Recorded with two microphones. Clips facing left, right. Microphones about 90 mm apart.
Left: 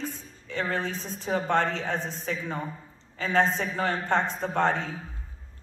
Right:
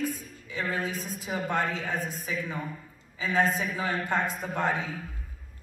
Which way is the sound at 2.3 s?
30° left (ahead or behind).